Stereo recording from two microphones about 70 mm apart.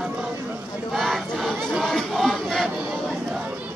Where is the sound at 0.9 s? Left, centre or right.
Centre.